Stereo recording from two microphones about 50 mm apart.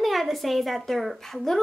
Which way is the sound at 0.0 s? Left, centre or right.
Centre.